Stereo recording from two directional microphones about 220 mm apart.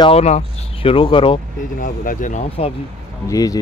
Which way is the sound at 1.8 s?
35° left (ahead or behind).